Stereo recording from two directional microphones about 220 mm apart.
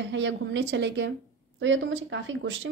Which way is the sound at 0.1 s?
55° right (ahead or behind).